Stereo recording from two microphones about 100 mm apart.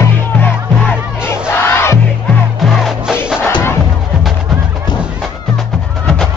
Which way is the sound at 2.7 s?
5° right (ahead or behind).